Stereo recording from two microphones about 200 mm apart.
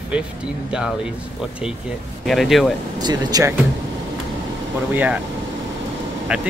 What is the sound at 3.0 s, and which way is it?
Speech, 20° right (ahead or behind).